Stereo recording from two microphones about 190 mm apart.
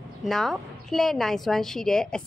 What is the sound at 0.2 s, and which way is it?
A woman's voice, centre (ahead or behind).